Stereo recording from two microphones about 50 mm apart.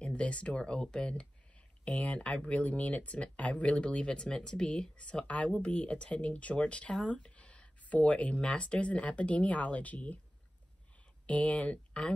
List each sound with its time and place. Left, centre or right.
0.0 s speech: left
11.2 s speech: left